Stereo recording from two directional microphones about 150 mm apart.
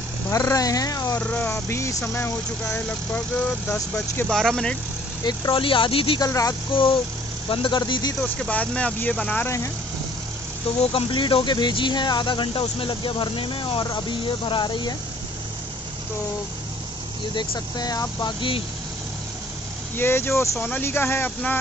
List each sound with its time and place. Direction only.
0.3 s speech: 25° left (ahead or behind)
1.2 s speech: 10° left (ahead or behind)
5.2 s speech: 30° left (ahead or behind)
6.2 s speech: 20° left (ahead or behind)
6.7 s speech: 35° left (ahead or behind)
8.2 s speech: 5° left (ahead or behind)
10.8 s speech: 40° left (ahead or behind)
17.4 s speech: 25° left (ahead or behind)
20.0 s speech: 15° left (ahead or behind)